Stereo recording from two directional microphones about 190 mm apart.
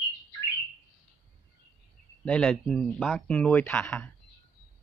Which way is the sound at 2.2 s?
5° left (ahead or behind).